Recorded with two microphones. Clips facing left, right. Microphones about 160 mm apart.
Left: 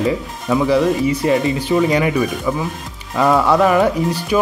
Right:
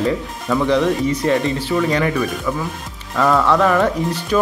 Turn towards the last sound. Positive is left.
turn(degrees=10)  # may be behind; listen again after turning